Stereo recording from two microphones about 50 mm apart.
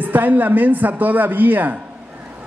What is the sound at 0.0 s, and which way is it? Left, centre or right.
A man's voice, right.